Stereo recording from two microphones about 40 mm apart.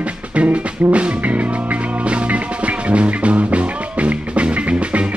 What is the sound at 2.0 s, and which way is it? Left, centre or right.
Music, right.